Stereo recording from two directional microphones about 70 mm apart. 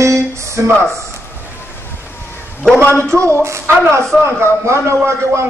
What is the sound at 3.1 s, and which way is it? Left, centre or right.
A woman's voice, right.